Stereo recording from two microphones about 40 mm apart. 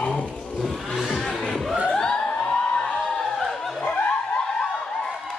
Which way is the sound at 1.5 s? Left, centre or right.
Centre.